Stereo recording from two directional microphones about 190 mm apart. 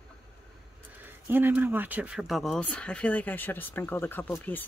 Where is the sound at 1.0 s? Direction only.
10° right (ahead or behind).